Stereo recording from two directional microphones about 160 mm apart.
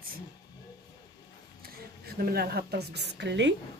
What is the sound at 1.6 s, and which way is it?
A woman's voice, 70° right (ahead or behind).